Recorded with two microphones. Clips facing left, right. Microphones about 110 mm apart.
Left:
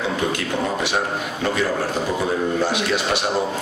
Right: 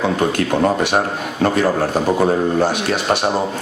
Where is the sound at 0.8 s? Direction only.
50° right (ahead or behind).